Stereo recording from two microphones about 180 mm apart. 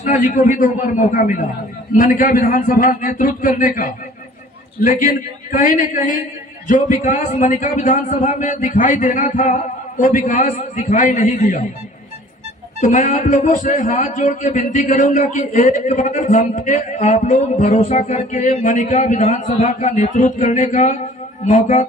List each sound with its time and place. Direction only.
0.0 s a man's voice: 45° left (ahead or behind)
5.0 s a man's voice: 45° left (ahead or behind)
12.8 s a man's voice: 45° left (ahead or behind)